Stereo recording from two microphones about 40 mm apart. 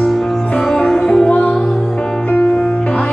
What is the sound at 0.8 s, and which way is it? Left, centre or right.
Music, centre.